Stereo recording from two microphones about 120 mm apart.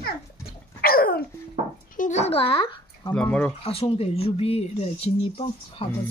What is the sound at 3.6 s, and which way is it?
Speech, 55° left (ahead or behind).